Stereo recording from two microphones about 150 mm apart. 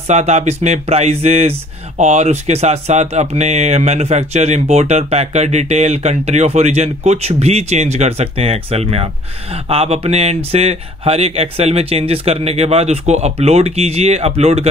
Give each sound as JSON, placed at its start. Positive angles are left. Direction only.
{"t": 0.1, "sound": "speech", "side_deg": -50}